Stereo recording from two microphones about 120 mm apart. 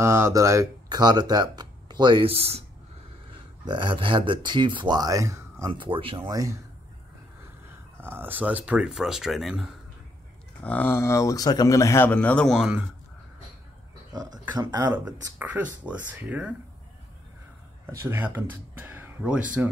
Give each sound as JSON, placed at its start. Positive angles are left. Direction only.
{"t": 0.0, "sound": "speech", "side_deg": -25}
{"t": 3.6, "sound": "speech", "side_deg": -40}
{"t": 5.7, "sound": "speech", "side_deg": -45}
{"t": 6.2, "sound": "speech", "side_deg": -30}
{"t": 8.0, "sound": "speech", "side_deg": -15}
{"t": 10.6, "sound": "speech", "side_deg": 10}
{"t": 12.1, "sound": "speech", "side_deg": 10}
{"t": 14.1, "sound": "speech", "side_deg": -35}
{"t": 15.3, "sound": "speech", "side_deg": -15}
{"t": 17.8, "sound": "speech", "side_deg": -20}